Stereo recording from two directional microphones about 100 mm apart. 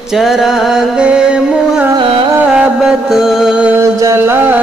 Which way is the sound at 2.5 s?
5° right (ahead or behind).